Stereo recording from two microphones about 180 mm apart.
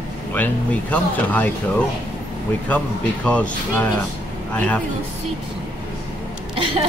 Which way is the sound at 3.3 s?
5° left (ahead or behind).